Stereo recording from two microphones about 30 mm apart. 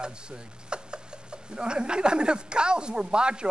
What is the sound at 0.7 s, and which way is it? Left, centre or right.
Mechanisms, right.